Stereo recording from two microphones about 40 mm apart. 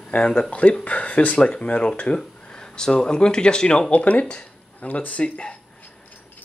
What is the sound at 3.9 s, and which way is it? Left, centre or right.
Speech, left.